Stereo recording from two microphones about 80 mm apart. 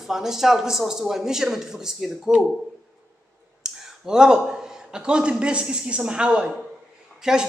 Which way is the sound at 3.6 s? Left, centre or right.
Centre.